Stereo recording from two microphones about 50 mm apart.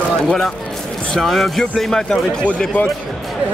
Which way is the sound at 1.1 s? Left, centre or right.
Centre.